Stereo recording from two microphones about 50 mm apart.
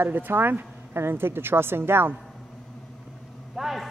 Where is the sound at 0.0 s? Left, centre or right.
Right.